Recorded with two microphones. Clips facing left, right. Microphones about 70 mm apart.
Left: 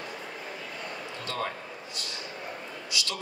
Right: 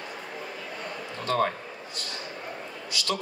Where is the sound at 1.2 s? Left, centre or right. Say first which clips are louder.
Right 8 dB; right.